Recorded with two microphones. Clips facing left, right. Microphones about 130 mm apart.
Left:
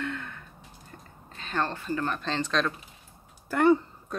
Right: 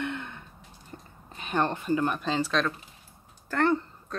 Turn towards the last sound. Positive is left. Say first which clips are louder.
# left 4 dB
turn(degrees=10)  # may be behind; listen again after turning